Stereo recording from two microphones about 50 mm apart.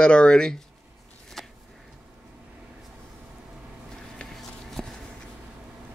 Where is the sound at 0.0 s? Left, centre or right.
Centre.